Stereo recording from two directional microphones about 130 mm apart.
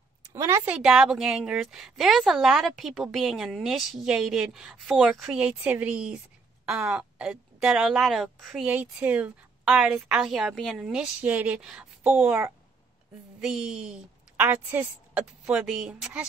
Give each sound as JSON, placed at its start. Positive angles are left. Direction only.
{"t": 0.3, "sound": "a woman's voice", "side_deg": -25}
{"t": 0.7, "sound": "a woman's voice", "side_deg": -5}
{"t": 8.6, "sound": "a woman's voice", "side_deg": -10}
{"t": 13.4, "sound": "a woman's voice", "side_deg": -5}